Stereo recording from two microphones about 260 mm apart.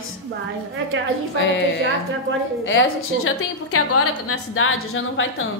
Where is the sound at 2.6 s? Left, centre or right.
Left.